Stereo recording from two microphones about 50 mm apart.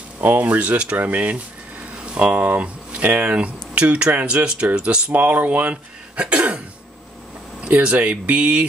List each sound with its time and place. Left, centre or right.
0.2 s speech: right
5.1 s speech: right
6.1 s speech: right
7.6 s speech: right